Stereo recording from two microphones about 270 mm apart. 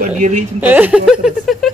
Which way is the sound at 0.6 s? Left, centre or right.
Centre.